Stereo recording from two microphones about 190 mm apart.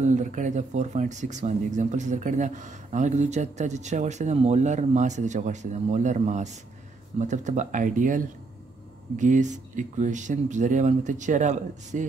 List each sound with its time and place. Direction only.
0.0 s speech: 40° right (ahead or behind)